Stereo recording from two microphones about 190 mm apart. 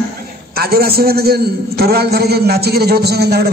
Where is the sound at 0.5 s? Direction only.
55° right (ahead or behind).